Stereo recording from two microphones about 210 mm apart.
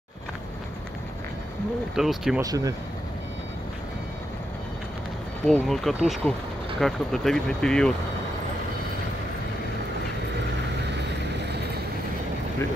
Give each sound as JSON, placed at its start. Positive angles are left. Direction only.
{"t": 2.0, "sound": "speech", "side_deg": 0}
{"t": 2.4, "sound": "speech", "side_deg": -15}
{"t": 5.5, "sound": "speech", "side_deg": 0}